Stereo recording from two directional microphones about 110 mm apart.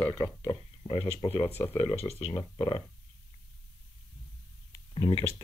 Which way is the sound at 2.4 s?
45° left (ahead or behind).